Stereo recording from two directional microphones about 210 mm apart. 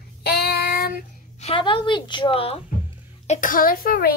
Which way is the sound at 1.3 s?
25° left (ahead or behind).